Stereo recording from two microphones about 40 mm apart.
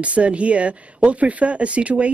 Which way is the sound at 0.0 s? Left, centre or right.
Right.